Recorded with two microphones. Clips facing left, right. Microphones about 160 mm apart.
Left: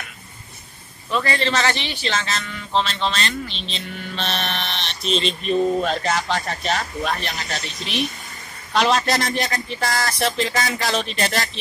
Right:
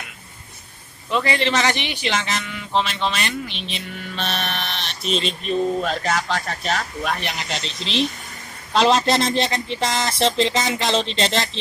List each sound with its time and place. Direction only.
1.1 s speech: 15° right (ahead or behind); by 7.2 s centre (ahead or behind)
7.2 s speech: 15° right (ahead or behind)